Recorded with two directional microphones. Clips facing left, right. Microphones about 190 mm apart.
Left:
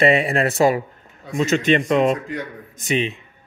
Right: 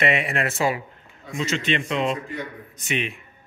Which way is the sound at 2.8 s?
35° left (ahead or behind).